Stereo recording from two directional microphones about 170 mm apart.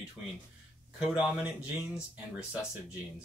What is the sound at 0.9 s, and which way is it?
Speech, 5° right (ahead or behind).